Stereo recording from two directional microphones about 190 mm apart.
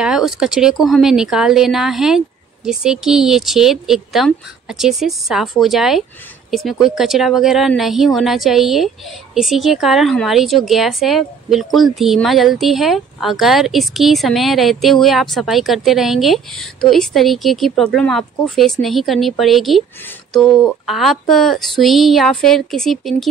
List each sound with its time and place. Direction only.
0.0 s speech: 5° right (ahead or behind)